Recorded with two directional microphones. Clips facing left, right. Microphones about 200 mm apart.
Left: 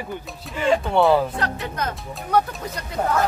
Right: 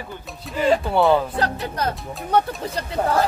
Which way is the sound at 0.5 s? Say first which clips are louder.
Right 1 dB; 35° right (ahead or behind).